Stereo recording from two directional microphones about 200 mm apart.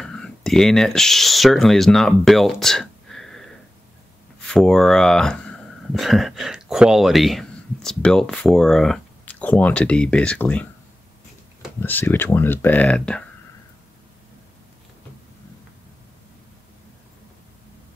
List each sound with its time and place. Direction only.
0.0 s speech: 5° left (ahead or behind)
11.8 s speech: 10° left (ahead or behind)